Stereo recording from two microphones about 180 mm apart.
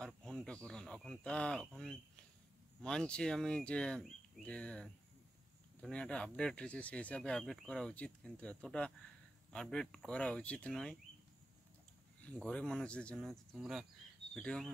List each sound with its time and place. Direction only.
0.0 s a sound: centre (ahead or behind)
2.8 s speech: 5° left (ahead or behind)
12.2 s speech: 5° left (ahead or behind)